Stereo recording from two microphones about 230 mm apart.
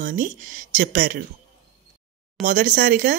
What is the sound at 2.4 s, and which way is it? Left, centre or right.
Speech, right.